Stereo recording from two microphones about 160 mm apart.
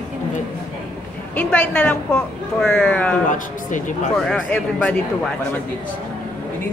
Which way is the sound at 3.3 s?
55° left (ahead or behind).